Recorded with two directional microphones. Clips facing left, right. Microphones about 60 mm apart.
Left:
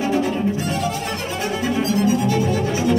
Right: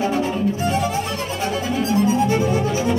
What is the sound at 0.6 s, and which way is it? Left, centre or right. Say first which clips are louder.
Music: right 2 dB; right.